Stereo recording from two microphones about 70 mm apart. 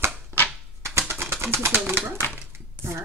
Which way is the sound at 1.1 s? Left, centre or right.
Right.